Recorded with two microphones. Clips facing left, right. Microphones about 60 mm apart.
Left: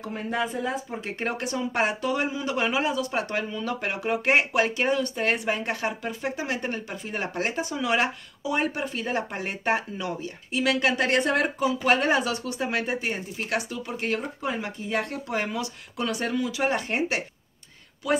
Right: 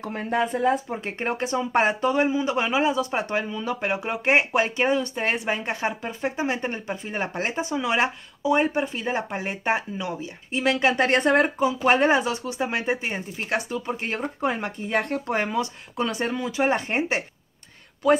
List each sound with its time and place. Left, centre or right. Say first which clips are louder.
0.0 s speech: right 4 dB; right
1.2 s speech: right 3 dB; right
14.4 s speech: right 4 dB; right
18.0 s speech: right 6 dB; right